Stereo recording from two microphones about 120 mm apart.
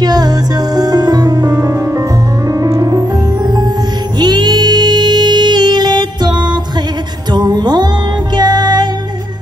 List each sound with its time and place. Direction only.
0.0 s music: 35° right (ahead or behind)